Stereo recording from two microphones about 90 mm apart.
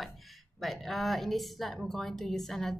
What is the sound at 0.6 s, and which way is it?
A woman's voice, centre (ahead or behind).